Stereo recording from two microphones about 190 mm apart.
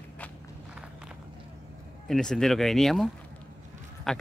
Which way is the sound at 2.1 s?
5° left (ahead or behind).